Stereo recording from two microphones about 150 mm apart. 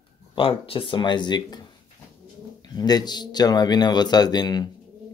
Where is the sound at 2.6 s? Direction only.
25° left (ahead or behind).